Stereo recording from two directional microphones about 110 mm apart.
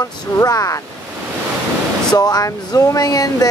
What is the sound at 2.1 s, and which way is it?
Speech, 35° left (ahead or behind).